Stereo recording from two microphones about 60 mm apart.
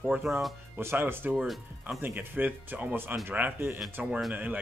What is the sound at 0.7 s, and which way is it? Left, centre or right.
Speech, right.